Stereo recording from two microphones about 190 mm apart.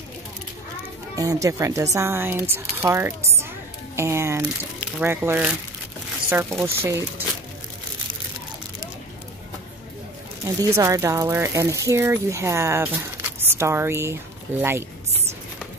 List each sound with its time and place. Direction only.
1.1 s speech: 20° right (ahead or behind)
6.6 s speech: 15° right (ahead or behind)
10.6 s speech: 15° right (ahead or behind)